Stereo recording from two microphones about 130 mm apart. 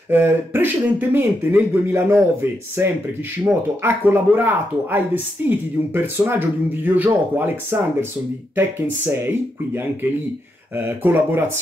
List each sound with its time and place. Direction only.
0.1 s speech: 15° right (ahead or behind)
10.8 s speech: 15° right (ahead or behind)